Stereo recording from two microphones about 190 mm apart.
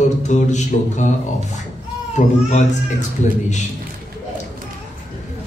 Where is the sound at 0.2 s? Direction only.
40° left (ahead or behind).